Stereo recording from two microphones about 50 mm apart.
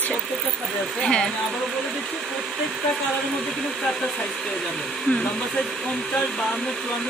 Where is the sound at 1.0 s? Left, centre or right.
Centre.